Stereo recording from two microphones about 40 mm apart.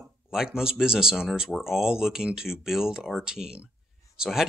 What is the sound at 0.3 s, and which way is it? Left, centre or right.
Speech, centre.